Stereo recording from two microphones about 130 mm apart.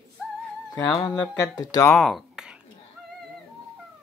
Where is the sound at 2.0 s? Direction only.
Centre (ahead or behind).